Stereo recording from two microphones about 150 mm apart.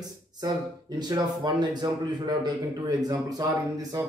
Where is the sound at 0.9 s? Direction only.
30° right (ahead or behind).